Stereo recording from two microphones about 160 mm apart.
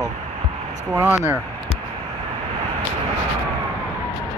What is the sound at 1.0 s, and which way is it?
Speech, 15° right (ahead or behind).